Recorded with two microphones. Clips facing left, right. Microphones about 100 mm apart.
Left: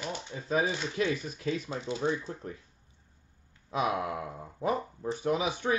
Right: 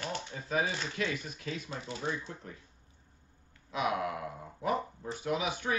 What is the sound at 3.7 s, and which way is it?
Speech, 35° left (ahead or behind).